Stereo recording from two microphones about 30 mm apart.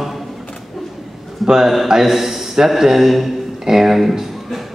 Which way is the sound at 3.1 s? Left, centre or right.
Centre.